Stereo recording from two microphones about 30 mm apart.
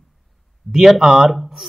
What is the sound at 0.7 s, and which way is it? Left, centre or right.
Speech, centre.